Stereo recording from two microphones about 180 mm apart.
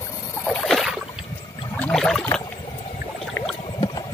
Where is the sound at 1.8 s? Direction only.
5° left (ahead or behind).